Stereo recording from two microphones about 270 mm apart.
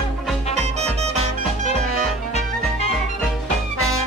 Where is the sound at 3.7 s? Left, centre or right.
Left.